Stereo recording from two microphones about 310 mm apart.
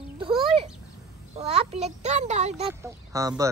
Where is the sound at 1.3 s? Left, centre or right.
Centre.